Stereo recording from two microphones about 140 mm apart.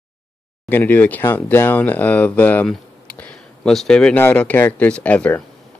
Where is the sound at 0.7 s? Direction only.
15° left (ahead or behind).